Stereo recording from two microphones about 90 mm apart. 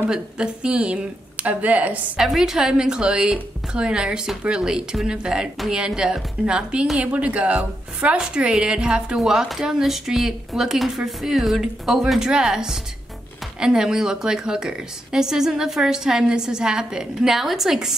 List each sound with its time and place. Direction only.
0.1 s a woman's voice: 10° right (ahead or behind)
2.1 s a woman's voice: 5° right (ahead or behind)